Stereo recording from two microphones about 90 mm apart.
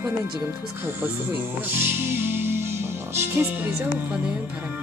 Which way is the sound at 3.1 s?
25° right (ahead or behind).